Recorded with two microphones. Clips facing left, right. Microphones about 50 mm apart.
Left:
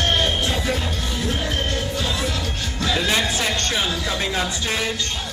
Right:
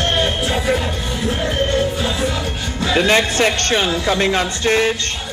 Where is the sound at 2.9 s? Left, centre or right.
Right.